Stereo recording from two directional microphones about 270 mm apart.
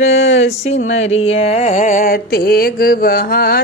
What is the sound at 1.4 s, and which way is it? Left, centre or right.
Mantra, left.